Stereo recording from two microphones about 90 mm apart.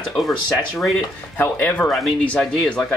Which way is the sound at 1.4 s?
20° left (ahead or behind).